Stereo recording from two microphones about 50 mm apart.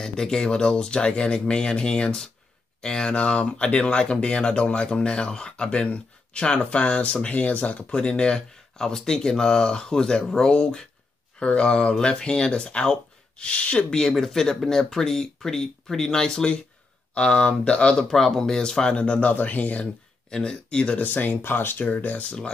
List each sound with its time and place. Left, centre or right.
0.0 s speech: centre; by 7.8 s left
7.9 s speech: centre
13.8 s speech: centre
18.1 s speech: centre
19.1 s speech: left
20.2 s speech: centre